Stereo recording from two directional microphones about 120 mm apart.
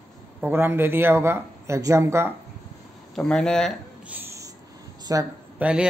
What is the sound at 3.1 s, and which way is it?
Speech, 5° left (ahead or behind).